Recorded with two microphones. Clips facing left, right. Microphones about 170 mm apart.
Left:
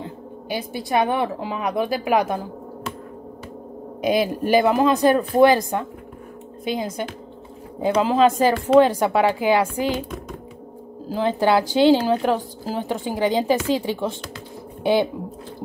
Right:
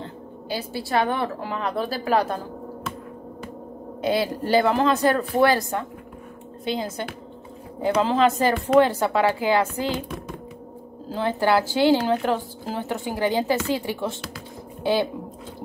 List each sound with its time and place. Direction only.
0.0 s a woman's voice: 15° left (ahead or behind)
4.0 s a woman's voice: 15° left (ahead or behind)
11.1 s a woman's voice: 15° left (ahead or behind)